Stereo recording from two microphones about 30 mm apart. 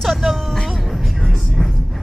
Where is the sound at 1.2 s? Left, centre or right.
Centre.